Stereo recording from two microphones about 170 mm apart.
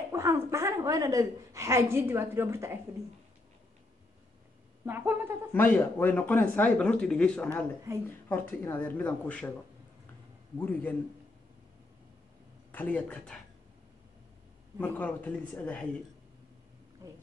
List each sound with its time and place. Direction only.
0.1 s a woman's voice: 15° right (ahead or behind)
4.8 s a woman's voice: 10° right (ahead or behind)
5.5 s speech: 10° left (ahead or behind)
10.6 s speech: 10° left (ahead or behind)
12.7 s speech: 10° left (ahead or behind)
14.8 s speech: 10° left (ahead or behind)
17.0 s a woman's voice: 15° right (ahead or behind)